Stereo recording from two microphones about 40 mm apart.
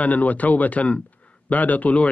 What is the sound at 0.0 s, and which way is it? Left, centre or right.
A man's voice, left.